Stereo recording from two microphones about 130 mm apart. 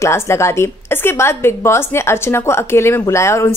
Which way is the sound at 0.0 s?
20° left (ahead or behind).